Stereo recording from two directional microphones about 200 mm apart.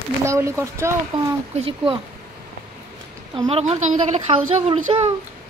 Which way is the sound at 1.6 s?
25° right (ahead or behind).